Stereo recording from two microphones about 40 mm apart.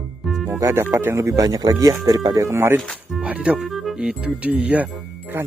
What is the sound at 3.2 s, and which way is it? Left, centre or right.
Speech, right.